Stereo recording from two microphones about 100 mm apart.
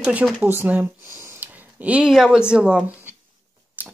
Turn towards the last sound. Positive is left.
turn(degrees=-15)  # may be behind; listen again after turning